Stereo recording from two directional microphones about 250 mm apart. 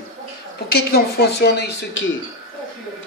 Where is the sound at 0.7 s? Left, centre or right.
Left.